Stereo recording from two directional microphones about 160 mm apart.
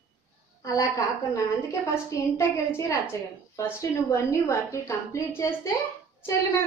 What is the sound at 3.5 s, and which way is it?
A woman's voice, 20° left (ahead or behind).